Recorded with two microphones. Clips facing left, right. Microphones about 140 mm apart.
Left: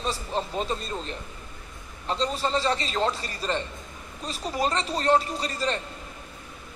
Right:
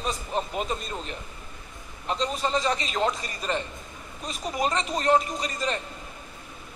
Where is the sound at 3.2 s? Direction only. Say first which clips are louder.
Even; 35° left (ahead or behind).